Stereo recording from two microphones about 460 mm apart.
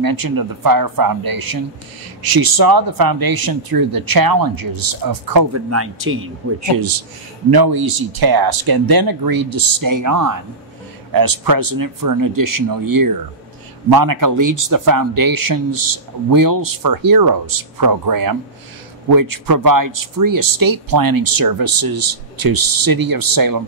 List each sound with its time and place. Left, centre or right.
0.0 s speech: right
5.7 s speech: right
6.6 s speech: right